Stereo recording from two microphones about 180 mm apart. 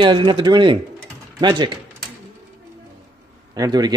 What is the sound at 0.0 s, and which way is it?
Speech, 25° right (ahead or behind).